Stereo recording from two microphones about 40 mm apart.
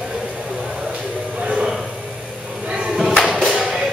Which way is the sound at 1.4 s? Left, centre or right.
Right.